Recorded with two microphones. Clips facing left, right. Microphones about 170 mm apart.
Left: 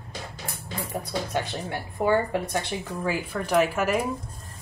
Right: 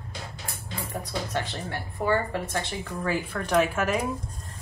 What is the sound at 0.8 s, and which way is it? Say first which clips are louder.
A woman's voice: left 2 dB; 5° left (ahead or behind).